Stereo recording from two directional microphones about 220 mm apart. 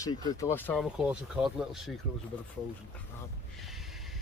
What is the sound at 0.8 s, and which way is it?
Speech, 5° right (ahead or behind).